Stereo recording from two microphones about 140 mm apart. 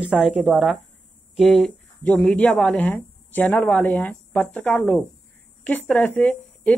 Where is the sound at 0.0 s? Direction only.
10° right (ahead or behind).